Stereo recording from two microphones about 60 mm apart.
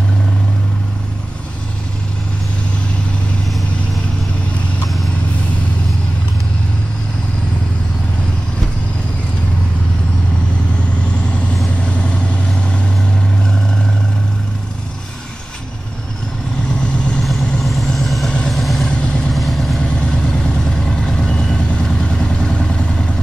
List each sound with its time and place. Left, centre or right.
11.8 s vehicle: centre
17.2 s vehicle: centre
18.9 s vehicle: centre
19.3 s vehicle: centre
20.0 s vehicle: centre